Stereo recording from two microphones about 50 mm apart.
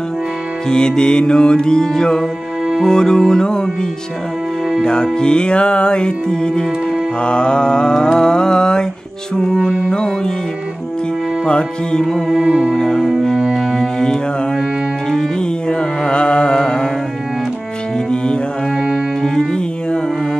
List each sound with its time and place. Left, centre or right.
0.7 s music: centre
4.8 s music: centre
11.4 s music: centre
12.4 s music: centre
12.7 s music: centre
15.7 s carnatic music: centre
18.1 s music: centre